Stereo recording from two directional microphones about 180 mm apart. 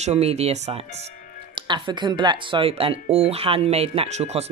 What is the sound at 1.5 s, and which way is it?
Speech, 25° right (ahead or behind).